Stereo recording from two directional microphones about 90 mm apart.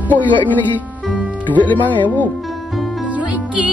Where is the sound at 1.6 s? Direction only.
20° left (ahead or behind).